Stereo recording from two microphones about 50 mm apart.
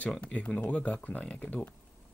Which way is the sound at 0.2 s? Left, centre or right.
Left.